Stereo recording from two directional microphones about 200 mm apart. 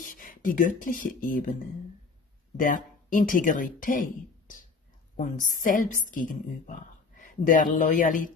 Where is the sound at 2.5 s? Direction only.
40° left (ahead or behind).